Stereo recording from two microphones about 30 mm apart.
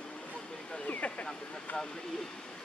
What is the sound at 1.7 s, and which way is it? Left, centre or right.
Speech, left.